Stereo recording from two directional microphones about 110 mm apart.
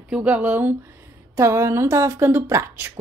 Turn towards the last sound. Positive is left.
turn(degrees=-20)  # may be behind; listen again after turning